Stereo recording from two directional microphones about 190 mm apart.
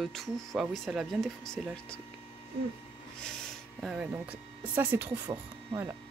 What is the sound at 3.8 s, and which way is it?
Speech, 5° right (ahead or behind).